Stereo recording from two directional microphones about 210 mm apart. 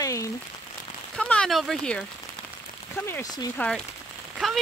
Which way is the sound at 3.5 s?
5° left (ahead or behind).